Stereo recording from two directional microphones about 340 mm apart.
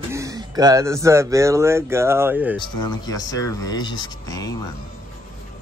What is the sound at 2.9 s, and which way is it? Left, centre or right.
Speech, centre.